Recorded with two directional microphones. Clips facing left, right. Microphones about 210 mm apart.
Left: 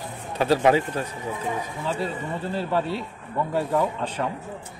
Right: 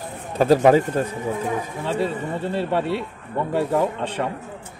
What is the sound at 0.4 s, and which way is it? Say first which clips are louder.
Speech: right 5 dB; 45° right (ahead or behind).